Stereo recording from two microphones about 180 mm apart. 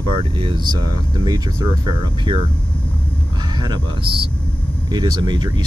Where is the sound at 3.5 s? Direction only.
25° right (ahead or behind).